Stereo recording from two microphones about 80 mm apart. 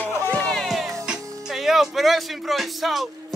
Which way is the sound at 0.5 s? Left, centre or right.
Centre.